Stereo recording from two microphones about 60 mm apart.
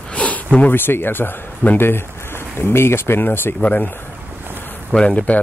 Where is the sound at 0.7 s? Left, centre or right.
Left.